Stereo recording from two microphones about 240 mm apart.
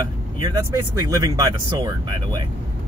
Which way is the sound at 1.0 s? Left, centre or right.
Centre.